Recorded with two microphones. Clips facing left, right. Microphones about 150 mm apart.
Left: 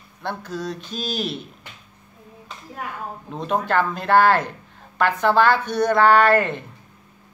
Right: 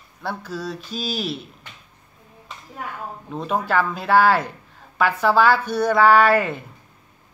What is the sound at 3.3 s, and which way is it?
Speech, 5° right (ahead or behind).